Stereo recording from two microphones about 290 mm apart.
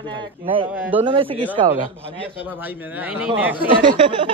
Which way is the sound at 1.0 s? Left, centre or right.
Centre.